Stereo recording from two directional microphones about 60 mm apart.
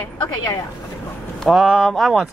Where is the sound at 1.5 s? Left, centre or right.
Centre.